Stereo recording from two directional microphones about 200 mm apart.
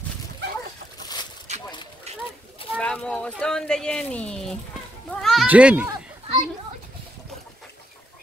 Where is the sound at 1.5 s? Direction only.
35° right (ahead or behind).